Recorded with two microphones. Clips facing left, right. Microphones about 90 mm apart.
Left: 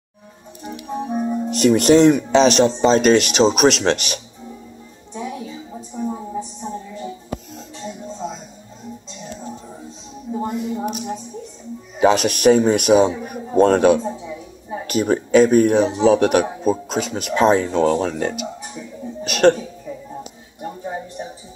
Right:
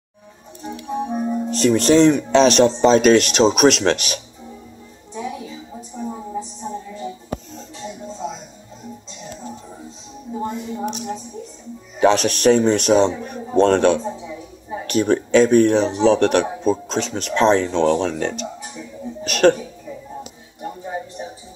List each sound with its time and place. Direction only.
0.6 s music: centre (ahead or behind)
1.1 s speech: centre (ahead or behind)
10.4 s a sound: 5° left (ahead or behind)
12.0 s speech: 5° left (ahead or behind)